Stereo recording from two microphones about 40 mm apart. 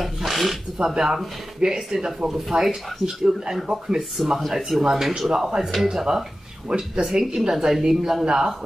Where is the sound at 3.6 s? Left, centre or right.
Centre.